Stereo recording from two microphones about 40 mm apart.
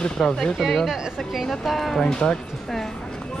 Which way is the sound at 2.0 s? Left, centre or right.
Left.